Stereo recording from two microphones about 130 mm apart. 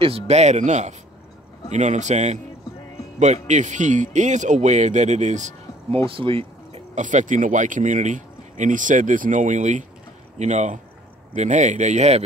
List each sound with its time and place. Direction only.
0.0 s a man's voice: 50° right (ahead or behind)
3.4 s speech: 65° right (ahead or behind)
6.0 s speech: 45° right (ahead or behind)
7.0 s a man's voice: 70° right (ahead or behind)